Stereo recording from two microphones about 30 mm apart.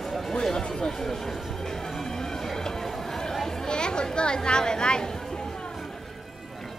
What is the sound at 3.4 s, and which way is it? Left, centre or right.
Chatter, centre.